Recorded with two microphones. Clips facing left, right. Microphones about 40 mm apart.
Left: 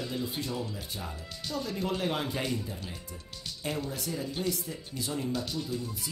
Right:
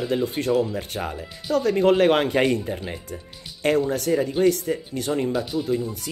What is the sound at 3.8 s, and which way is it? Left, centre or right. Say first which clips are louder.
Speech: right 13 dB; right.